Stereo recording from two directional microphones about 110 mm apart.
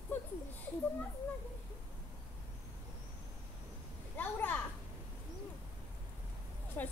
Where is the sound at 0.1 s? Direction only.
15° left (ahead or behind).